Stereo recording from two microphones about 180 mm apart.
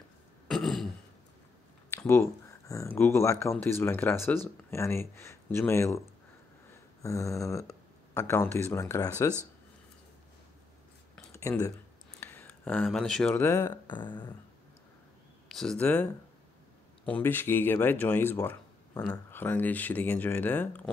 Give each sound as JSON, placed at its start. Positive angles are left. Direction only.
{"t": 0.5, "sound": "throat clearing", "side_deg": 0}
{"t": 2.0, "sound": "a sound", "side_deg": 15}
{"t": 2.7, "sound": "speech", "side_deg": 15}
{"t": 7.0, "sound": "speech", "side_deg": 15}
{"t": 11.1, "sound": "a sound", "side_deg": 15}
{"t": 12.2, "sound": "speech", "side_deg": 10}
{"t": 15.4, "sound": "speech", "side_deg": 0}